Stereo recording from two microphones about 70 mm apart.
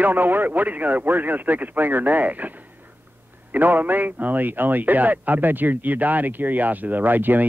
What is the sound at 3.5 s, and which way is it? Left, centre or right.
A man's voice, right.